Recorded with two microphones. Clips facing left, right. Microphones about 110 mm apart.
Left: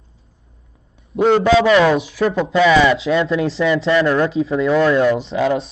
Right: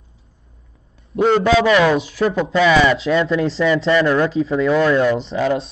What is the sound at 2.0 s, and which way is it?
Speech, centre (ahead or behind).